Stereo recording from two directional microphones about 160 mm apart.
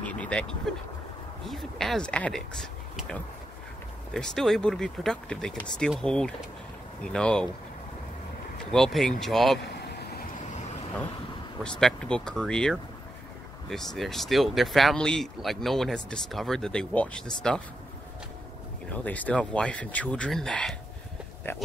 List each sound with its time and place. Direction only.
0.0 s speech: 10° left (ahead or behind)
8.5 s speech: 5° left (ahead or behind)
11.6 s speech: 5° left (ahead or behind)
19.0 s speech: 10° left (ahead or behind)
21.5 s speech: 15° left (ahead or behind)